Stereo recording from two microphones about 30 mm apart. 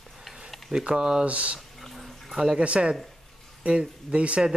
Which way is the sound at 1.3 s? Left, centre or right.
Right.